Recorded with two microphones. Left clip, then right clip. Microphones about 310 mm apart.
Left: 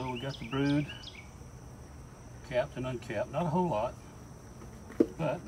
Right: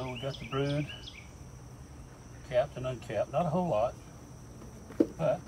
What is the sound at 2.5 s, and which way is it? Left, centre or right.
Cricket, centre.